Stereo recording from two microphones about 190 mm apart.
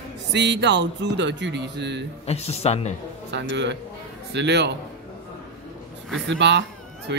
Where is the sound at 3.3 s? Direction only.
70° right (ahead or behind).